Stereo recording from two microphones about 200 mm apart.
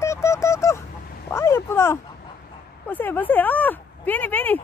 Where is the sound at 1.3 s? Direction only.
15° left (ahead or behind).